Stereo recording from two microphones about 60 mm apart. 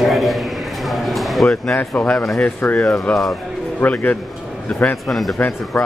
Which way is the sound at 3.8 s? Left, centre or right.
Left.